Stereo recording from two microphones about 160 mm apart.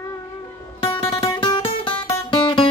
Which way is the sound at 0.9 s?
35° left (ahead or behind).